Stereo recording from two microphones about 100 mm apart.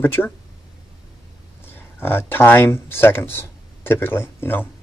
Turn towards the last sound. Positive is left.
turn(degrees=20)  # may be behind; listen again after turning